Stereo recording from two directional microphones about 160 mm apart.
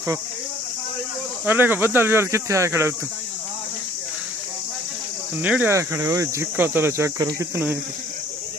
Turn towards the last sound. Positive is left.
turn(degrees=-15)  # may be behind; listen again after turning